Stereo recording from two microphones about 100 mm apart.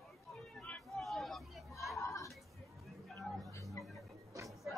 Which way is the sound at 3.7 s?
Centre (ahead or behind).